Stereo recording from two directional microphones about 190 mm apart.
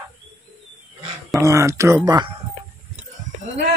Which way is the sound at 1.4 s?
15° right (ahead or behind).